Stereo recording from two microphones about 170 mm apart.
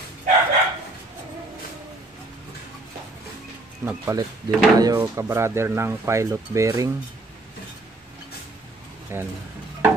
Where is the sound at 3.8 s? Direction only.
15° right (ahead or behind).